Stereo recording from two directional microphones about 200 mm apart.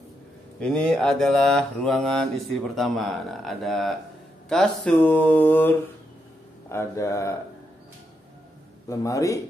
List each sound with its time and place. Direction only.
0.6 s mantra: 5° left (ahead or behind)
4.5 s speech: 5° left (ahead or behind)
8.8 s speech: 15° left (ahead or behind)